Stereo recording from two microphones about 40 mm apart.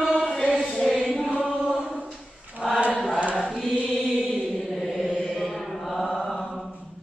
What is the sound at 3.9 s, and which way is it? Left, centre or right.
Chant, centre.